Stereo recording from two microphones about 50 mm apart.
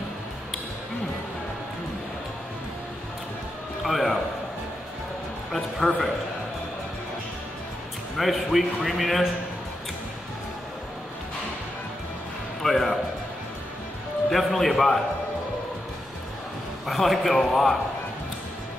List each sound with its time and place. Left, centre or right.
3.8 s speech: centre
5.8 s a man's voice: centre
8.2 s speech: centre
12.6 s speech: centre
14.3 s speech: centre
16.8 s a man's voice: centre